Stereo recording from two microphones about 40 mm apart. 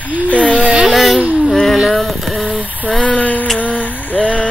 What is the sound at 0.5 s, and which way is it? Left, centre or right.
Speech, right.